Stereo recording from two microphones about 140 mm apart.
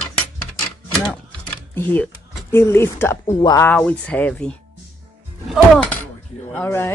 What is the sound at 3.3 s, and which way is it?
Speech, 30° left (ahead or behind).